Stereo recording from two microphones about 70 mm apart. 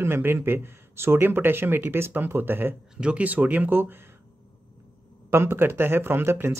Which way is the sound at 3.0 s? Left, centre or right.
Right.